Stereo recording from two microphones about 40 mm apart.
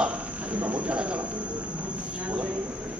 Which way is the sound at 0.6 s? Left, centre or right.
Right.